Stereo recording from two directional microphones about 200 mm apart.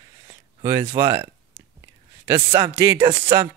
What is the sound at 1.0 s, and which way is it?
Speech, 10° right (ahead or behind).